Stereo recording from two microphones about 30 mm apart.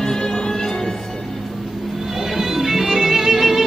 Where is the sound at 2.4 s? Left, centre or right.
Centre.